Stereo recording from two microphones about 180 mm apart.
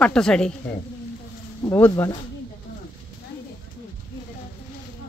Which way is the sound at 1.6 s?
10° left (ahead or behind).